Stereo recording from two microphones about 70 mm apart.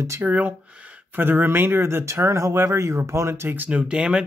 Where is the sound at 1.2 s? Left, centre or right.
Right.